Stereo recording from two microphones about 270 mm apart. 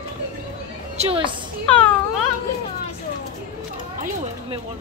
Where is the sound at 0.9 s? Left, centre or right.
Centre.